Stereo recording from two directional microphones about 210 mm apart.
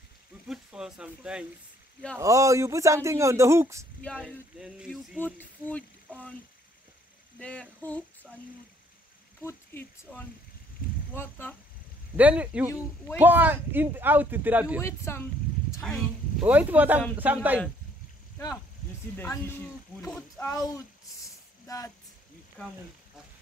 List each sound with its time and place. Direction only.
0.5 s speech: 5° right (ahead or behind)
4.0 s speech: 5° left (ahead or behind)
7.3 s speech: 5° left (ahead or behind)
9.4 s speech: 10° left (ahead or behind)
12.2 s speech: 5° right (ahead or behind)
14.8 s speech: 10° left (ahead or behind)
16.3 s speech: 10° right (ahead or behind)
19.1 s speech: 10° left (ahead or behind)